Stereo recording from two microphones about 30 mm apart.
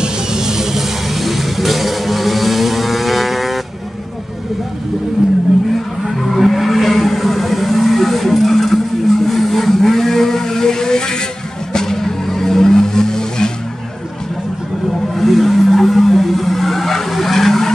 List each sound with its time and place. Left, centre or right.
0.0 s vehicle: centre
6.0 s vehicle: centre; by 13.5 s left
15.1 s vehicle: centre